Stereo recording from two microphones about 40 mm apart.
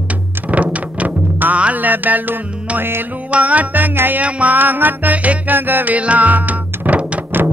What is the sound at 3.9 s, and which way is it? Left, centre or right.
Music, right.